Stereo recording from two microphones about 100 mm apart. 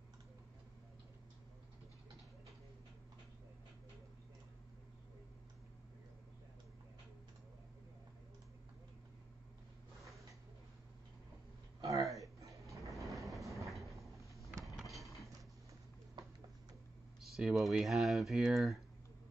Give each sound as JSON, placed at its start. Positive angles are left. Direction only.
{"t": 11.8, "sound": "a sound", "side_deg": -35}
{"t": 13.0, "sound": "vehicle", "side_deg": -30}
{"t": 13.6, "sound": "sliding door", "side_deg": 0}
{"t": 14.7, "sound": "mechanisms", "side_deg": 0}
{"t": 17.2, "sound": "speech", "side_deg": -5}